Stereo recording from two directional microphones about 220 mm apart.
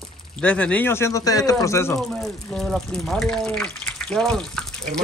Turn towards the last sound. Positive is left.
turn(degrees=0)  # may be behind; listen again after turning